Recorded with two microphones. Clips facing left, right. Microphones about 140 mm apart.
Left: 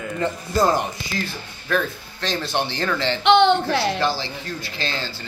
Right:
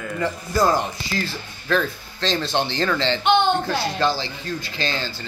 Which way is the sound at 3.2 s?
70° left (ahead or behind).